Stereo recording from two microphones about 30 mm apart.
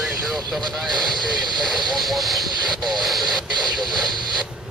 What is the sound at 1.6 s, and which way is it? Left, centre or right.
Vehicle, centre.